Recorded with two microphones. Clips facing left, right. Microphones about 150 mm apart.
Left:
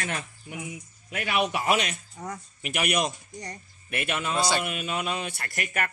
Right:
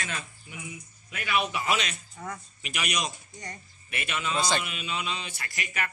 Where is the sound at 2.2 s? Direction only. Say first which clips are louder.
Left 1 dB; 40° left (ahead or behind).